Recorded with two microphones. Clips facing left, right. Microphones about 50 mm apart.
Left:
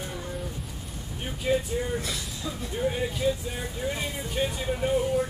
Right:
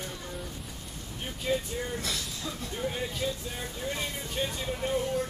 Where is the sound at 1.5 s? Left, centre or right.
Centre.